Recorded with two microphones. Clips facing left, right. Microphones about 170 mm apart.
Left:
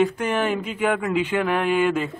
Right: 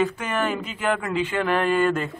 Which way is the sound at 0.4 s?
5° left (ahead or behind).